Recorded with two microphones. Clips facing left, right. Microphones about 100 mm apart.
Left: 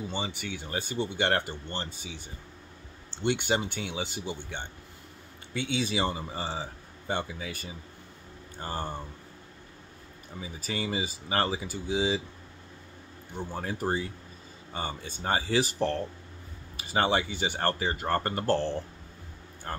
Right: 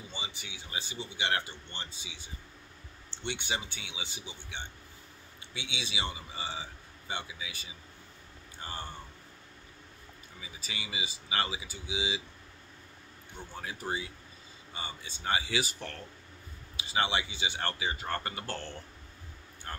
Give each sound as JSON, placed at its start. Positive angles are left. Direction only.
{"t": 0.1, "sound": "speech", "side_deg": 55}
{"t": 3.3, "sound": "speech", "side_deg": 50}
{"t": 10.3, "sound": "speech", "side_deg": 45}
{"t": 13.4, "sound": "speech", "side_deg": 45}
{"t": 16.7, "sound": "speech", "side_deg": 50}